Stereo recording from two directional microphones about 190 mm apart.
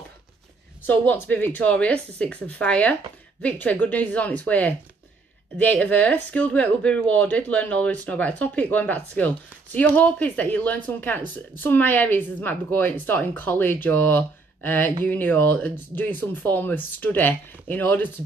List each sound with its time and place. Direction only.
0.8 s speech: 10° left (ahead or behind)